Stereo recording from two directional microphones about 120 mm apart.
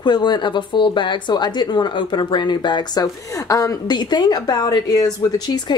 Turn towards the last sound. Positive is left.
turn(degrees=35)  # may be behind; listen again after turning